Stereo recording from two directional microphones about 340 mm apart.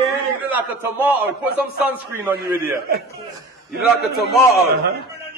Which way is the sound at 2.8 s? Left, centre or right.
Right.